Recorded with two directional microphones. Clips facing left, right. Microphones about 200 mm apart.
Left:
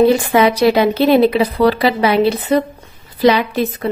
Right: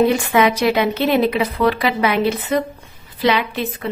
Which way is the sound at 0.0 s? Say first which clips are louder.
Left 4 dB; 35° left (ahead or behind).